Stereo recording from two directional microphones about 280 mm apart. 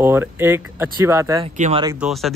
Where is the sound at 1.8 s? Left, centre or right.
Centre.